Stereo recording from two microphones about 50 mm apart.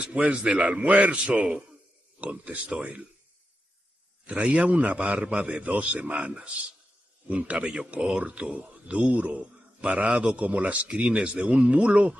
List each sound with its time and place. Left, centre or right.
0.0 s a man's voice: right
4.3 s a man's voice: right